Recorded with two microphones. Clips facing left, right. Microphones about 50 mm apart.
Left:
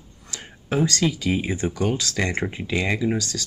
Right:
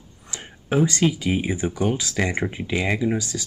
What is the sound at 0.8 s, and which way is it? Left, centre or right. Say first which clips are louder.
Speech: right 2 dB; right.